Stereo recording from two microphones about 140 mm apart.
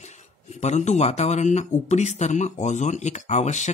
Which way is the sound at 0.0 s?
55° left (ahead or behind).